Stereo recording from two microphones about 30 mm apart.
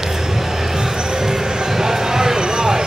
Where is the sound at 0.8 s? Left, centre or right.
Centre.